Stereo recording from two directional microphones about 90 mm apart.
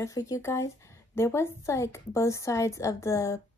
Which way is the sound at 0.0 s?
40° left (ahead or behind).